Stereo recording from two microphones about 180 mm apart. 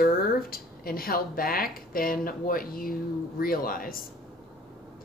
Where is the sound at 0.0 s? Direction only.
55° left (ahead or behind).